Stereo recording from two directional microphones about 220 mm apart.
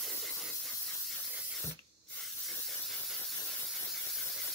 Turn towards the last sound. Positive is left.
turn(degrees=0)  # may be behind; listen again after turning